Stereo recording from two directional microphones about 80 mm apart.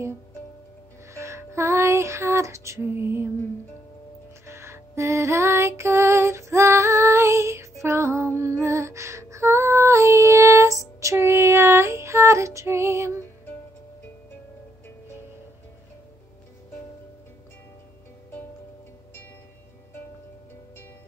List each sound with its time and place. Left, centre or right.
1.1 s music: right
4.5 s music: right